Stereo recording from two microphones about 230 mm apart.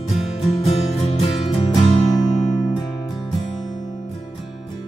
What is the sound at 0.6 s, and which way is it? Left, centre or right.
Music, left.